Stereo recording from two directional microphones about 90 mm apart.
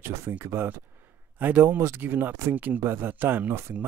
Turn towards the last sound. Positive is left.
turn(degrees=-20)  # may be behind; listen again after turning